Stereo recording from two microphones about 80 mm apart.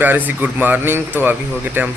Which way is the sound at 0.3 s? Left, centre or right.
Right.